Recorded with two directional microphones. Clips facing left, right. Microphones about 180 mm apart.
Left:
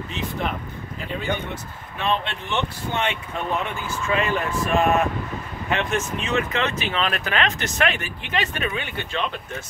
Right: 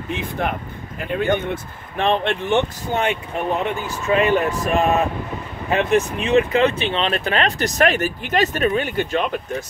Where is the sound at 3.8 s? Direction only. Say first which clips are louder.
Right 7 dB; 35° right (ahead or behind).